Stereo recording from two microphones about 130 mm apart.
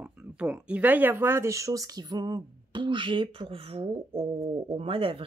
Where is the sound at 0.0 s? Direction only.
10° right (ahead or behind).